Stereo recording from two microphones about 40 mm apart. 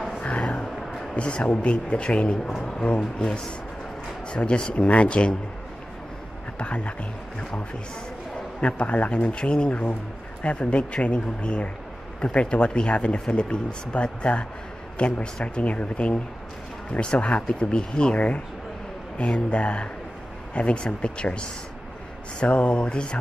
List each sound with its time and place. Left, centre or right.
1.1 s speech: left
6.6 s speech: left
8.5 s speech: left